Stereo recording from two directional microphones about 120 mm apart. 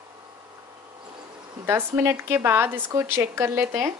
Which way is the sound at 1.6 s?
20° right (ahead or behind).